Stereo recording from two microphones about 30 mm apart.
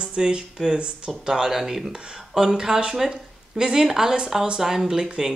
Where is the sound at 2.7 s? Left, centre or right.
Right.